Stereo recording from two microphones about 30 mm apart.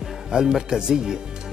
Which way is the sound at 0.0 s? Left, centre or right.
Centre.